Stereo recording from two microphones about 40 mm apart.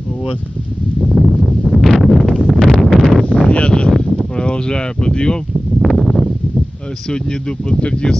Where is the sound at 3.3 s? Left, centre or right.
Left.